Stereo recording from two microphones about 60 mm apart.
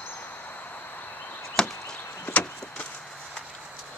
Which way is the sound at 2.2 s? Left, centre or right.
Left.